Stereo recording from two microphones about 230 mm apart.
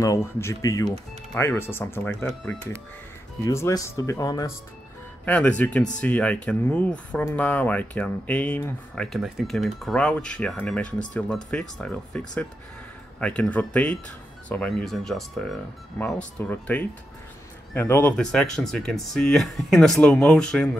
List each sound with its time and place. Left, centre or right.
0.0 s speech: centre